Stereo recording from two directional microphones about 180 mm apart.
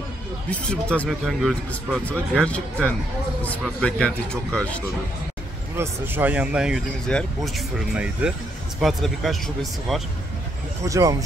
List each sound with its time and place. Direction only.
0.5 s speech: 5° left (ahead or behind)
5.8 s speech: 10° right (ahead or behind)
10.8 s speech: 20° right (ahead or behind)